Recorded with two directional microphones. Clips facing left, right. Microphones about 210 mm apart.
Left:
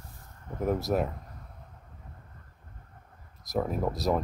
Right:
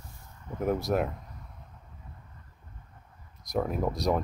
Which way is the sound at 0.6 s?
Centre (ahead or behind).